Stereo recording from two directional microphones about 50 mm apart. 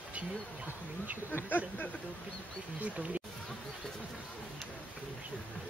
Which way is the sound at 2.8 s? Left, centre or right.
Right.